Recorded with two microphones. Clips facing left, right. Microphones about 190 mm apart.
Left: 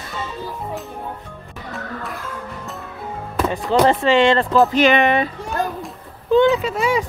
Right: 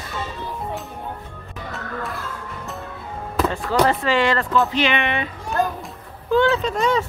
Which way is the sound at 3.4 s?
20° left (ahead or behind).